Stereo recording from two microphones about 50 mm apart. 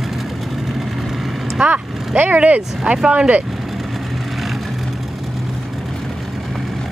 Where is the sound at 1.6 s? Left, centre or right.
Right.